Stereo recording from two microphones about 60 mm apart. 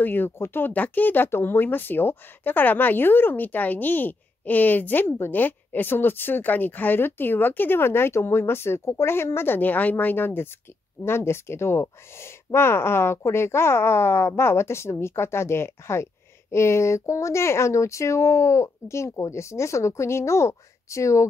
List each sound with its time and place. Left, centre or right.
0.0 s speech: left